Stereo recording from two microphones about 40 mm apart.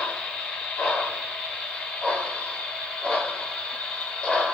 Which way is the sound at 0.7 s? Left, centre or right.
Left.